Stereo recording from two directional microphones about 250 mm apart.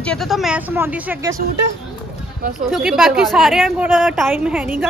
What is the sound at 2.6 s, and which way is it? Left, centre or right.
A woman's voice, centre.